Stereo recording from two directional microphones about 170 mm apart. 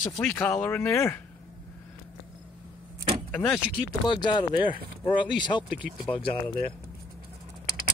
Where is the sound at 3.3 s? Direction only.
10° left (ahead or behind).